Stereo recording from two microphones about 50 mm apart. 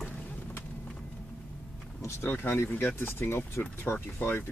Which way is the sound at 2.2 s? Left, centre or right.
Left.